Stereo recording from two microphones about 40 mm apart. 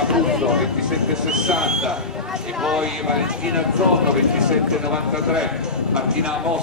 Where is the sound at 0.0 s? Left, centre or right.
Centre.